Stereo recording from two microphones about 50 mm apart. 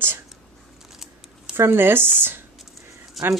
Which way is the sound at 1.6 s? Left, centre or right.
Right.